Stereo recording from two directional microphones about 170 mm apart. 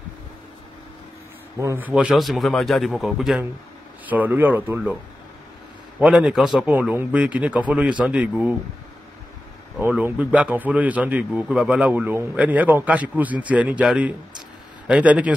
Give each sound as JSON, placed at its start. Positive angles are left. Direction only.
{"t": 1.6, "sound": "a man's voice", "side_deg": -15}
{"t": 5.9, "sound": "a man's voice", "side_deg": -5}
{"t": 9.8, "sound": "speech", "side_deg": -15}